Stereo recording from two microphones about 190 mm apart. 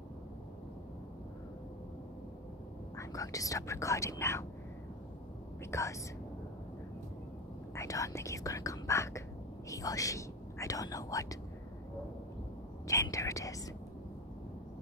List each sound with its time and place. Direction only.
3.0 s speech: 15° left (ahead or behind)
5.7 s speech: 15° left (ahead or behind)
7.7 s speech: 15° left (ahead or behind)
12.8 s speech: 15° left (ahead or behind)